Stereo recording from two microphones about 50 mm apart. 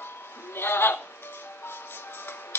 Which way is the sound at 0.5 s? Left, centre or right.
Left.